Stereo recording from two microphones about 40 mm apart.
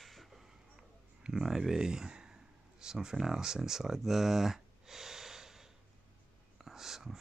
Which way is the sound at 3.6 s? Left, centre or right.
Centre.